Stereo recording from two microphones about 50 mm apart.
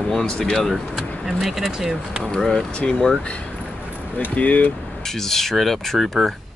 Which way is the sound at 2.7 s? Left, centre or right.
Left.